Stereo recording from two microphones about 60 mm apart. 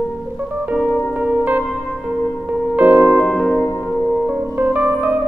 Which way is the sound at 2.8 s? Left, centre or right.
Right.